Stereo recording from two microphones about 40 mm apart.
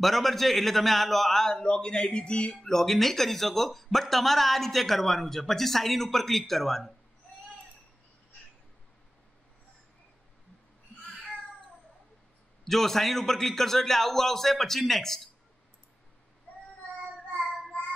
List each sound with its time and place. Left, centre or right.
0.0 s speech: centre
1.6 s a man's voice: left
2.6 s speech: centre
12.6 s a man's voice: centre